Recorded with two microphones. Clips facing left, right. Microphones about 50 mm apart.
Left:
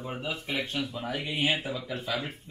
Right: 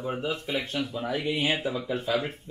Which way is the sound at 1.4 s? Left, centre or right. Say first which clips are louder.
Right 2 dB; right.